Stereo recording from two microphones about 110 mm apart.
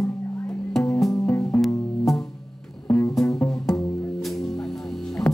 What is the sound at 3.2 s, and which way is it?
Music, 5° left (ahead or behind).